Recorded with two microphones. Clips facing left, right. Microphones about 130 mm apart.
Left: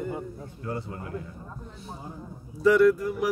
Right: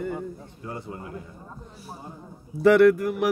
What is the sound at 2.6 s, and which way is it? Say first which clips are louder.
Mantra: right 3 dB; 65° right (ahead or behind).